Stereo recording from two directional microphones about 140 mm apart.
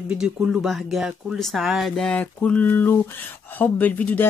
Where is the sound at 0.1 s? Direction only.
5° right (ahead or behind).